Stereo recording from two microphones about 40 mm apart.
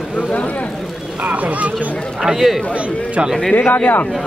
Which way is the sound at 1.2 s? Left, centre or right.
Right.